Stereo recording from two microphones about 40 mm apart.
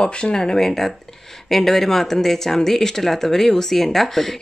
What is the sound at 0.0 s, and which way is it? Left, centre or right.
Speech, left.